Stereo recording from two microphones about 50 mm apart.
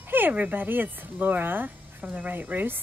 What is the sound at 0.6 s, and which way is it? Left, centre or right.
Speech, right.